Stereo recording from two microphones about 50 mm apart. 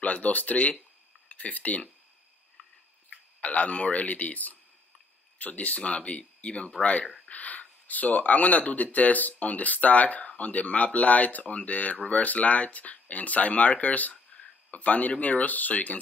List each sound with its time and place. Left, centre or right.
0.0 s speech: left
2.6 s biting: left
3.1 s speech: left